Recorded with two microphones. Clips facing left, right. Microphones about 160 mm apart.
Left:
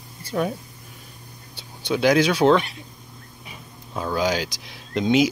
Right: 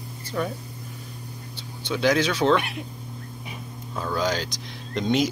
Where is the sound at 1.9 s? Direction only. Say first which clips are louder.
Left 4 dB; 10° left (ahead or behind).